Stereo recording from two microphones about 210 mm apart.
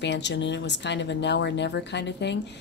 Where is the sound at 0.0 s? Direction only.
55° left (ahead or behind).